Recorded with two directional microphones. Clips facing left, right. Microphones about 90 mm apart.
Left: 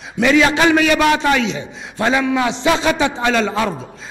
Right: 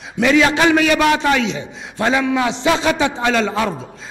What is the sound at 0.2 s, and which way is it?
A man's voice, 15° left (ahead or behind).